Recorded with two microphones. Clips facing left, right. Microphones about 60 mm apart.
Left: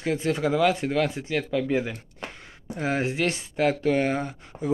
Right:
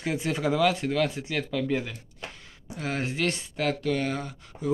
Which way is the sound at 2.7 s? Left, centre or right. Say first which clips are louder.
Left 5 dB; left.